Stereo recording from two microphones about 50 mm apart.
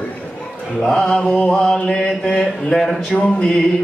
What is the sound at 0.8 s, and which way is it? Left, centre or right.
Speech, centre.